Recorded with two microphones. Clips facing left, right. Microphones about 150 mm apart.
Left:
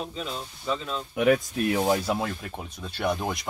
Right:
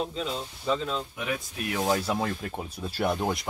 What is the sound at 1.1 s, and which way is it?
Speech, 60° left (ahead or behind).